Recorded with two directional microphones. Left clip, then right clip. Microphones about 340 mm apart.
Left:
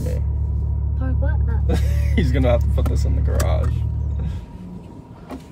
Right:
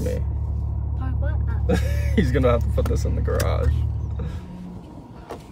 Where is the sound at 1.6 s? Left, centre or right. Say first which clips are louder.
Right 4 dB; centre.